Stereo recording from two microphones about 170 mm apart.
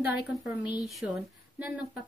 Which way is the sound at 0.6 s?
25° left (ahead or behind).